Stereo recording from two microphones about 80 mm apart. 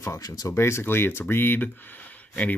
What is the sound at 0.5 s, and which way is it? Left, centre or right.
Speech, left.